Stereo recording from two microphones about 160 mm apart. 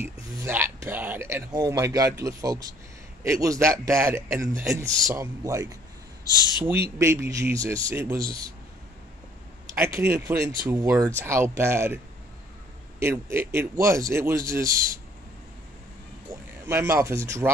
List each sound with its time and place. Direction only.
0.0 s speech: 15° right (ahead or behind)
7.0 s speech: 20° right (ahead or behind)
9.9 s speech: 15° right (ahead or behind)
13.0 s speech: 15° right (ahead or behind)
16.3 s speech: 20° right (ahead or behind)